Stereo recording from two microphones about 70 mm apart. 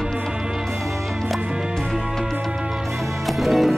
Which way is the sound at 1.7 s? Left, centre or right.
Centre.